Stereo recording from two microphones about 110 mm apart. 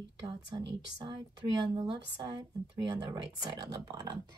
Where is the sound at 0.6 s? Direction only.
40° right (ahead or behind).